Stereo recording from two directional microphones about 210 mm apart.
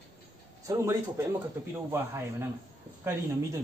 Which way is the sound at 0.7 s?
15° right (ahead or behind).